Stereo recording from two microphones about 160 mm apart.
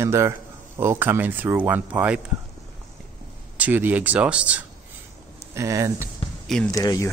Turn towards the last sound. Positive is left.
turn(degrees=20)  # may be behind; listen again after turning